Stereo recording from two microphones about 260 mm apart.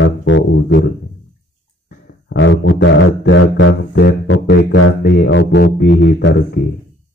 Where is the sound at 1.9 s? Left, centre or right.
Left.